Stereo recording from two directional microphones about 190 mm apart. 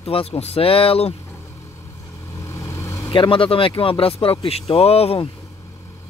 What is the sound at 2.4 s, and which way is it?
Speech, 15° left (ahead or behind).